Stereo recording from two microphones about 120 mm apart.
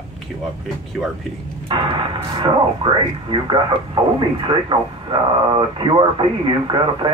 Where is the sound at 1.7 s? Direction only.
45° right (ahead or behind).